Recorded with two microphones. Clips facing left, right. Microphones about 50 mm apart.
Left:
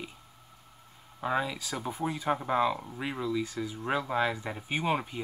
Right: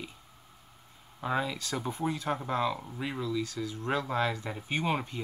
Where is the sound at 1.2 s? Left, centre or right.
Centre.